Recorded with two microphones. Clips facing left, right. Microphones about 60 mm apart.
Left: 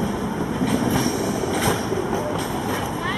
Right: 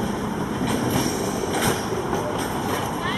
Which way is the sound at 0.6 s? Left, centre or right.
Centre.